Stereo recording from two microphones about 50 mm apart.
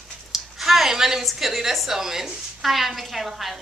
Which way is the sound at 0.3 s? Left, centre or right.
Centre.